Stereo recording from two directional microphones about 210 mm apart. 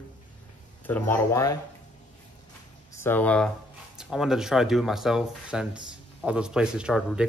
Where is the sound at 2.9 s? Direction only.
10° left (ahead or behind).